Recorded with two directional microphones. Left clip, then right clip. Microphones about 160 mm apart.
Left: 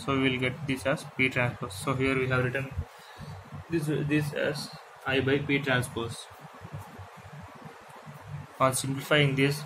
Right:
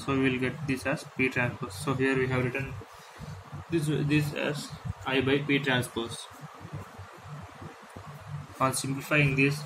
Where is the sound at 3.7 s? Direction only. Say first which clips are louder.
Even; 10° left (ahead or behind).